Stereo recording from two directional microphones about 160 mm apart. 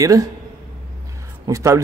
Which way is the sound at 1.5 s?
20° right (ahead or behind).